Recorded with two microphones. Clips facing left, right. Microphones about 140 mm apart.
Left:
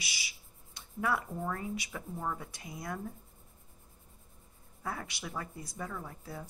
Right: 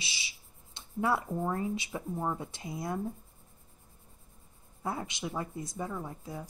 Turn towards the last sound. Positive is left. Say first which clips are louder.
# right 3 dB
turn(degrees=-15)  # may be behind; listen again after turning